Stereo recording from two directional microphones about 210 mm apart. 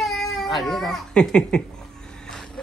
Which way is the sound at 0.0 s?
Centre (ahead or behind).